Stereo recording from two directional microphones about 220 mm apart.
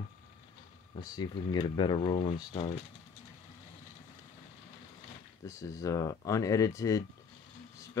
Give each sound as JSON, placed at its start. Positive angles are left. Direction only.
{"t": 0.9, "sound": "speech", "side_deg": 20}
{"t": 5.5, "sound": "speech", "side_deg": 15}